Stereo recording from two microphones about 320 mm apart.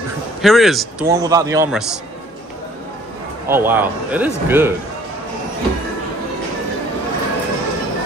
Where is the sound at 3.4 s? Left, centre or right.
Centre.